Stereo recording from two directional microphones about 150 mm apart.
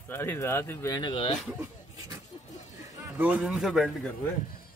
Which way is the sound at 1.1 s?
35° left (ahead or behind).